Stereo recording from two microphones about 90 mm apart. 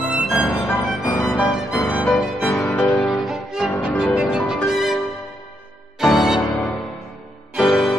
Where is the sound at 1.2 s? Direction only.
10° left (ahead or behind).